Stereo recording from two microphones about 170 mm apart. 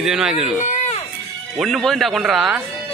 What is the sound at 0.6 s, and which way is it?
Run, 45° left (ahead or behind).